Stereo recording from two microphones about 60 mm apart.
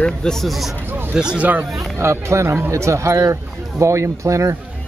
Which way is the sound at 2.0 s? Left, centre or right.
Right.